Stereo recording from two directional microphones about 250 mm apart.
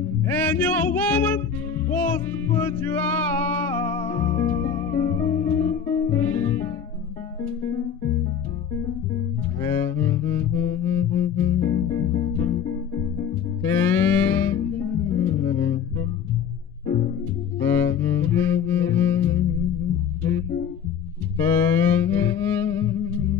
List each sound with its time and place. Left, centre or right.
0.0 s music: centre
9.6 s music: centre
17.6 s cello: centre
20.2 s music: centre